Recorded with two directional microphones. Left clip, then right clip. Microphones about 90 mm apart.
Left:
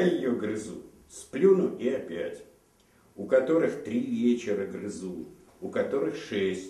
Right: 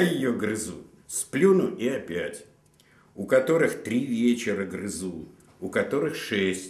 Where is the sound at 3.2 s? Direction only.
35° right (ahead or behind).